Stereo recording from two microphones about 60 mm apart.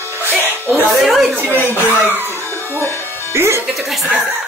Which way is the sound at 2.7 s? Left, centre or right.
Left.